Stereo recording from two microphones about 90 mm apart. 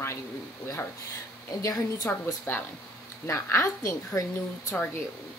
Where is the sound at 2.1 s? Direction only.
25° left (ahead or behind).